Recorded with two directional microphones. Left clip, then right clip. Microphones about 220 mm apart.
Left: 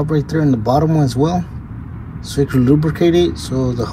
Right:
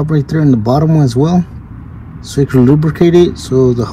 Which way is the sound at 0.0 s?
40° right (ahead or behind).